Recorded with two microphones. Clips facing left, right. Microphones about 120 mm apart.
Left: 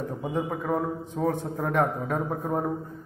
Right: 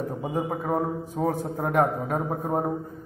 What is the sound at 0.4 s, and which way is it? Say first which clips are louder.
A man's voice: right 1 dB; 25° right (ahead or behind).